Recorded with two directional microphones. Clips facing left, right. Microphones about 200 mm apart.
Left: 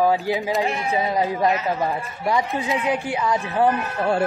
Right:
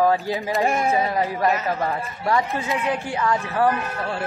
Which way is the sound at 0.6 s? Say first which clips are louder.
Right 3 dB; 45° right (ahead or behind).